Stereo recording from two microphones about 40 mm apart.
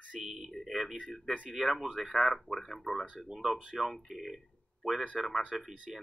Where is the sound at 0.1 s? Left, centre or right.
Right.